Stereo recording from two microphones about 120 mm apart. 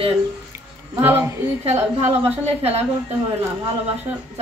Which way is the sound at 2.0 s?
60° right (ahead or behind).